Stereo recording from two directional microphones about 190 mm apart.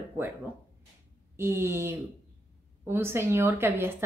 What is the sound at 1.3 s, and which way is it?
A woman's voice, 10° right (ahead or behind).